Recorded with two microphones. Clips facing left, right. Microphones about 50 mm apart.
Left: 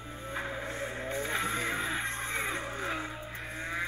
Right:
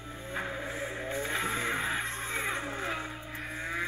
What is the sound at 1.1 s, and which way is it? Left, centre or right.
Music, right.